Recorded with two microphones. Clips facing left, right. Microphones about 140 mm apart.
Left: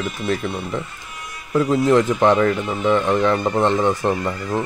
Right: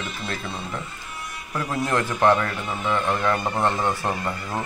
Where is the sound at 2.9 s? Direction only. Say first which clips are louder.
Left 6 dB; 20° left (ahead or behind).